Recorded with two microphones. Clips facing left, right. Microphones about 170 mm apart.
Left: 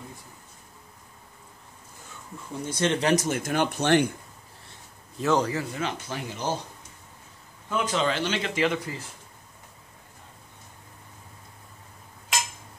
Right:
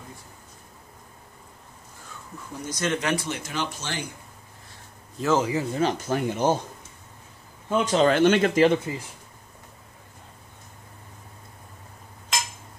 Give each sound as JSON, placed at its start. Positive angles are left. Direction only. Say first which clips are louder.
{"t": 2.6, "sound": "speech", "louder": "left 2 dB", "side_deg": 30}
{"t": 5.2, "sound": "speech", "louder": "right 1 dB", "side_deg": 0}
{"t": 5.7, "sound": "speech", "louder": "right 7 dB", "side_deg": -35}
{"t": 7.7, "sound": "speech", "louder": "right 6 dB", "side_deg": -35}
{"t": 8.1, "sound": "speech", "louder": "right 9 dB", "side_deg": -50}
{"t": 8.7, "sound": "speech", "louder": "right 5 dB", "side_deg": -25}